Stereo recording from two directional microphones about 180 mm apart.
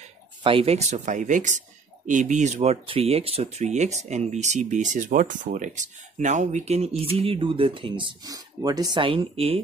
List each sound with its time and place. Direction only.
0.4 s speech: 30° right (ahead or behind)